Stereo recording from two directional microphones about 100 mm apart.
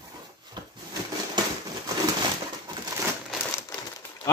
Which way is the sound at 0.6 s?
45° right (ahead or behind).